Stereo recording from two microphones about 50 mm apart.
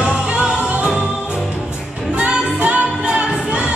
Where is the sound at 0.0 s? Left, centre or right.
Right.